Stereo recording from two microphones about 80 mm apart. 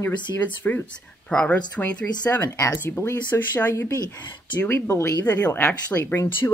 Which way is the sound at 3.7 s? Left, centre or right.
Left.